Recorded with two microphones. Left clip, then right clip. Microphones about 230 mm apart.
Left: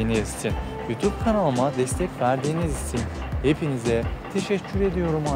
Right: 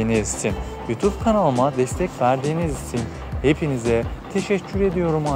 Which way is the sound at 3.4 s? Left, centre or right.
Centre.